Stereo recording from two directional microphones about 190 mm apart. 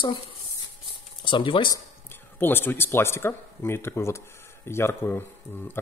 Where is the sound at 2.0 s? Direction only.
10° left (ahead or behind).